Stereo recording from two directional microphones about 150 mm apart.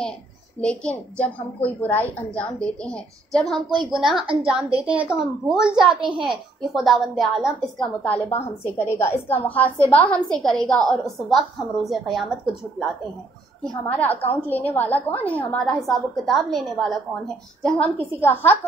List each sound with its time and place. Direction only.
0.6 s a woman's voice: 5° left (ahead or behind)
4.2 s a woman's voice: 35° right (ahead or behind)
4.8 s a woman's voice: 5° right (ahead or behind)
13.8 s a woman's voice: 10° left (ahead or behind)